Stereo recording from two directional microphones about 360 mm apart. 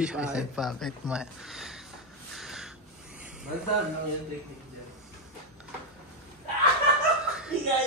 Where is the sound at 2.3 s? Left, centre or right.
Centre.